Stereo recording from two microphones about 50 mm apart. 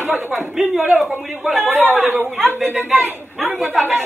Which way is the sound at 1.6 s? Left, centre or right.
Right.